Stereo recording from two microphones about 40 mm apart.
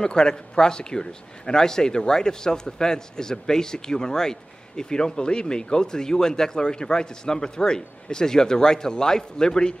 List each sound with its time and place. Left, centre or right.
0.0 s speech: centre